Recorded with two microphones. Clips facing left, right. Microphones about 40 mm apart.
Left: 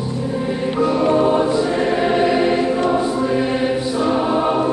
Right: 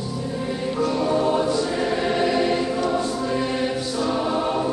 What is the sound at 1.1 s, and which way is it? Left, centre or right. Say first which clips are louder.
Choir: left 5 dB; centre.